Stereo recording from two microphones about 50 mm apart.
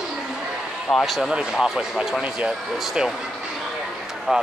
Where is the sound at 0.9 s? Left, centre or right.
Centre.